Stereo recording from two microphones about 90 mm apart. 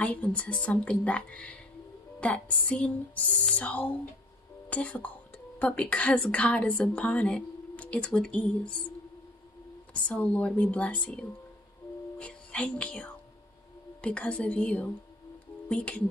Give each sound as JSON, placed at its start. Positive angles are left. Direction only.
{"t": 0.0, "sound": "a woman's voice", "side_deg": 15}
{"t": 9.9, "sound": "a woman's voice", "side_deg": 15}